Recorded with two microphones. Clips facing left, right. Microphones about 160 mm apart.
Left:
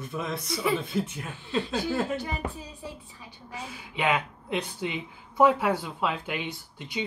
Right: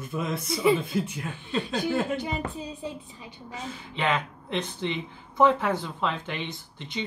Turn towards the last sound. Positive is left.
turn(degrees=10)  # may be behind; listen again after turning